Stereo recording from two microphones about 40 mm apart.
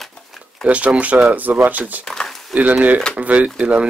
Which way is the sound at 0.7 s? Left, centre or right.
Right.